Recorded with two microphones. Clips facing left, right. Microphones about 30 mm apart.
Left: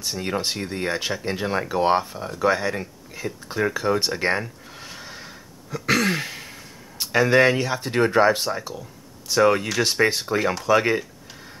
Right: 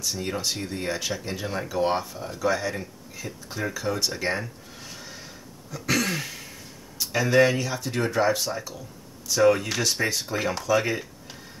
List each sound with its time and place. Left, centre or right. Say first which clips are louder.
0.0 s speech: left 3 dB; left
10.2 s speech: left 5 dB; centre
10.6 s speech: left 4 dB; left